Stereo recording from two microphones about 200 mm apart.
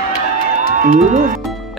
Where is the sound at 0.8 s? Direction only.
40° right (ahead or behind).